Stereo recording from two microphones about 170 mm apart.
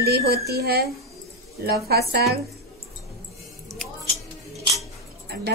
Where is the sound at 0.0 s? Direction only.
70° right (ahead or behind).